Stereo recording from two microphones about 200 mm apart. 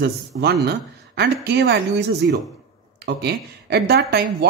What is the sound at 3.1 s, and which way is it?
Speech, 55° right (ahead or behind).